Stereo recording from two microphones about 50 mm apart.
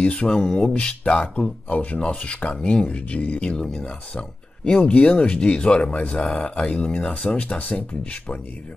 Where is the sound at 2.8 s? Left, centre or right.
Left.